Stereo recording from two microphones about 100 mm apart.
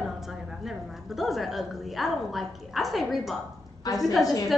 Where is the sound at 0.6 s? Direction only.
Centre (ahead or behind).